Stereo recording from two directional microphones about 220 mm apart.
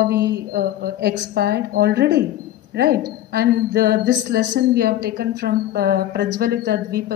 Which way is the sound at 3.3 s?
45° right (ahead or behind).